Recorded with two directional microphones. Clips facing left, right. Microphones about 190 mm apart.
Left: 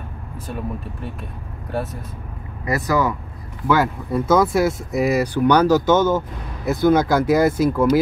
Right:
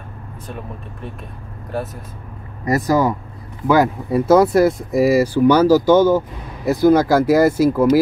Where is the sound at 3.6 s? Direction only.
15° right (ahead or behind).